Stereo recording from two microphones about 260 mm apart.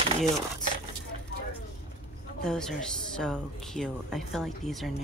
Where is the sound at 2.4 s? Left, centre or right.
Centre.